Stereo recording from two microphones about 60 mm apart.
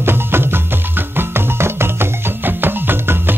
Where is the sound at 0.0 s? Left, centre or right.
Right.